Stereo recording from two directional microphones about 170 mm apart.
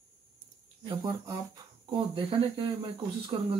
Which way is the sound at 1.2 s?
25° right (ahead or behind).